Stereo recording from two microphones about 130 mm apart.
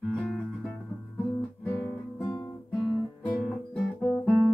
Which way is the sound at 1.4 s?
5° left (ahead or behind).